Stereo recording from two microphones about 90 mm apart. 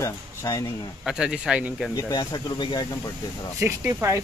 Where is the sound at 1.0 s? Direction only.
10° right (ahead or behind).